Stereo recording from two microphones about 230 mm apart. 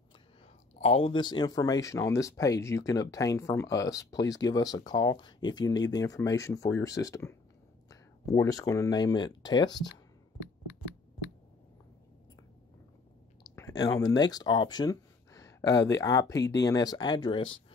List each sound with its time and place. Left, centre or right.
0.7 s speech: left
10.4 s a sound: left
13.4 s speech: centre